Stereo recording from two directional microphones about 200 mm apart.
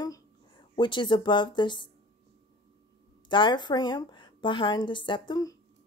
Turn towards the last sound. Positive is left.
turn(degrees=20)  # may be behind; listen again after turning